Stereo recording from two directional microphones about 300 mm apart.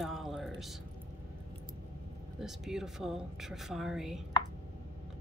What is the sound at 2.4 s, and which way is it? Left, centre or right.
A woman's voice, centre.